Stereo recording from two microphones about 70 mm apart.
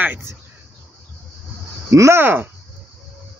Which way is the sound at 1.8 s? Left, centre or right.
Right.